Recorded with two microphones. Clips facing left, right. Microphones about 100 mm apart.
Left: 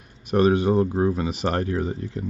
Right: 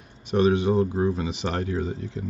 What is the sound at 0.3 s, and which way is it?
Speech, 45° left (ahead or behind).